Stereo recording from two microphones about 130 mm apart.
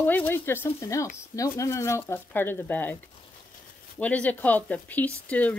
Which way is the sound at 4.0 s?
10° left (ahead or behind).